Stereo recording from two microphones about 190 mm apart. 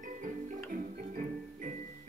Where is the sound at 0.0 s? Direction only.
40° right (ahead or behind).